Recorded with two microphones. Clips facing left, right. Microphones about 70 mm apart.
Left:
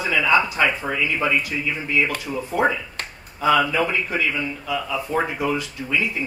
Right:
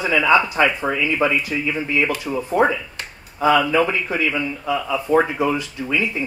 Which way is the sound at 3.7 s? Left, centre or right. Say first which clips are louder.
Right 3 dB; right.